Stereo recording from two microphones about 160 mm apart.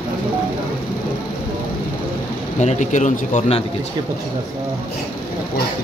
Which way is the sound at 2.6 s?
50° left (ahead or behind).